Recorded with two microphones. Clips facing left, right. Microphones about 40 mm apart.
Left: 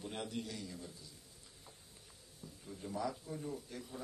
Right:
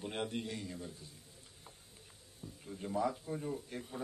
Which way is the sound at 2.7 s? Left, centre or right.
Right.